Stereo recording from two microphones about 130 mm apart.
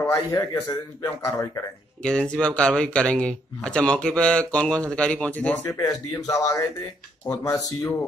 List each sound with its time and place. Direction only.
0.0 s a man's voice: 25° left (ahead or behind)
2.0 s speech: 5° left (ahead or behind)
5.8 s a man's voice: 25° left (ahead or behind)